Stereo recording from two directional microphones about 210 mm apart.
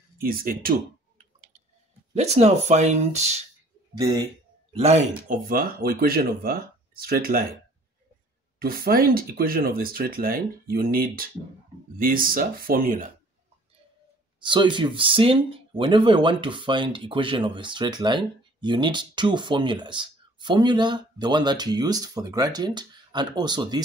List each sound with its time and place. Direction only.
0.2 s clicking: 45° right (ahead or behind)
2.1 s speech: 30° right (ahead or behind)
3.9 s speech: 20° right (ahead or behind)
4.7 s speech: 30° right (ahead or behind)
5.5 s speech: 45° right (ahead or behind)
8.5 s speech: 45° right (ahead or behind)
14.4 s speech: 20° right (ahead or behind)